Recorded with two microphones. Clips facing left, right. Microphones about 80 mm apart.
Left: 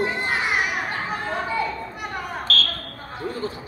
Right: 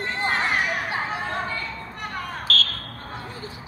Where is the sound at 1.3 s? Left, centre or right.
Centre.